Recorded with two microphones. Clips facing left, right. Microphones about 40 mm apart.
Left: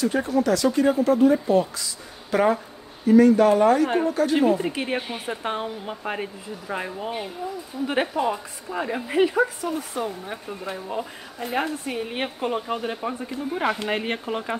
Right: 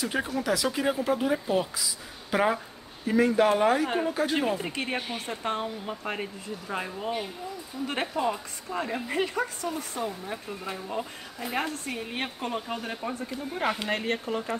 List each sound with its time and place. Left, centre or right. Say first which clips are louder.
0.0 s speech: left 7 dB; centre
4.4 s a woman's voice: left 7 dB; centre
14.0 s speech: left 2 dB; left